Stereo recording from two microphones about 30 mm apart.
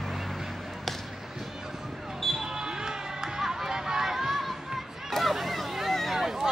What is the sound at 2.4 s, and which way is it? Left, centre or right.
Basketball bounce, right.